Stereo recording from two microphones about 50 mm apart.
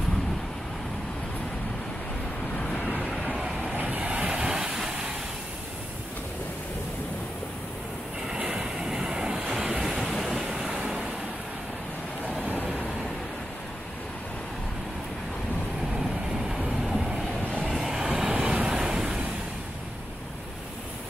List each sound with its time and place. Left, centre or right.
2.5 s vehicle: centre
2.8 s vehicle: left
3.7 s train: right; by 5.1 s centre
8.3 s train: centre
10.0 s vehicle: centre
10.4 s vehicle: centre
12.6 s vehicle: centre
15.9 s vehicle: centre
17.9 s vehicle: centre